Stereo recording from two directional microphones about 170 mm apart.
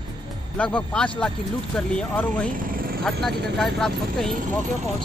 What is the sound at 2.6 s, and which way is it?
Vehicle, 55° right (ahead or behind).